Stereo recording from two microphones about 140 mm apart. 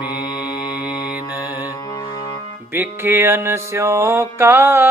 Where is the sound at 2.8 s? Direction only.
15° right (ahead or behind).